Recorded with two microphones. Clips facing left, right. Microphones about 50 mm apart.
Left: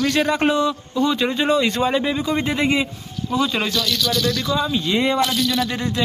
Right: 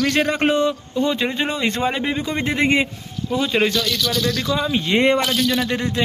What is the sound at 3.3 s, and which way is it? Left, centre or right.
Speech, right.